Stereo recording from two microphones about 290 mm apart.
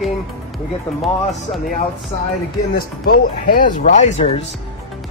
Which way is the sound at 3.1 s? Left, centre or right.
Left.